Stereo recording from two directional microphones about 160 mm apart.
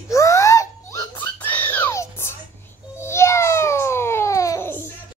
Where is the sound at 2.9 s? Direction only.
15° left (ahead or behind).